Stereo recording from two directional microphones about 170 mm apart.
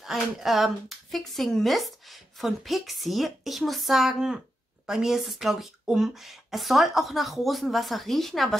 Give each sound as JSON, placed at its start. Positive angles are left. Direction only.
{"t": 0.0, "sound": "speech", "side_deg": 0}